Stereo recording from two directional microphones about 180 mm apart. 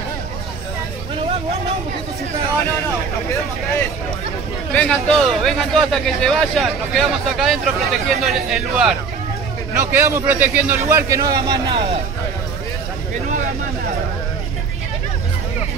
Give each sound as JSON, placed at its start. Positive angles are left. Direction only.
{"t": 4.7, "sound": "speech", "side_deg": 5}
{"t": 9.8, "sound": "a man's voice", "side_deg": -15}
{"t": 11.7, "sound": "speech", "side_deg": -30}